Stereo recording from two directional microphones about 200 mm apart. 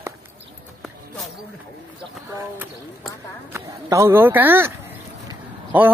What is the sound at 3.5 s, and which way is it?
Speech, 15° right (ahead or behind).